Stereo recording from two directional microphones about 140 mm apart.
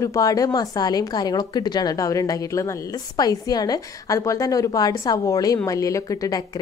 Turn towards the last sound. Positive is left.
turn(degrees=25)  # may be behind; listen again after turning